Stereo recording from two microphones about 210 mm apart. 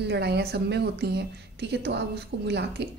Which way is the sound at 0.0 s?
50° right (ahead or behind).